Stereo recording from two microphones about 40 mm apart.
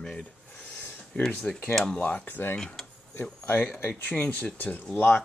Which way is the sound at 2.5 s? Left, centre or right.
Centre.